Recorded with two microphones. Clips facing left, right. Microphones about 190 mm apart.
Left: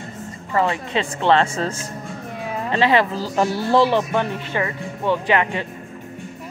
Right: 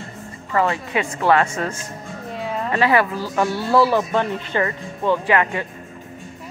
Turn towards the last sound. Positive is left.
turn(degrees=20)  # may be behind; listen again after turning